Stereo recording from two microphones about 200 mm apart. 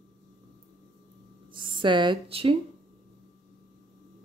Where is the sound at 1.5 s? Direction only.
25° right (ahead or behind).